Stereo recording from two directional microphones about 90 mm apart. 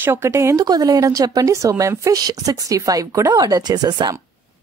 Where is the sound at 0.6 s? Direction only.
45° right (ahead or behind).